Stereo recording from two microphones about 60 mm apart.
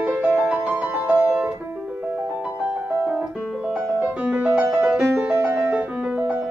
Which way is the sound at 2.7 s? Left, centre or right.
Right.